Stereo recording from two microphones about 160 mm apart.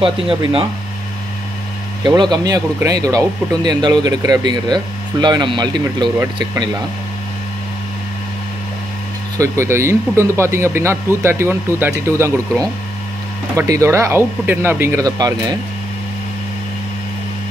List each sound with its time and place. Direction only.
0.0 s speech: 35° right (ahead or behind)
2.0 s speech: 25° right (ahead or behind)
9.4 s speech: 15° right (ahead or behind)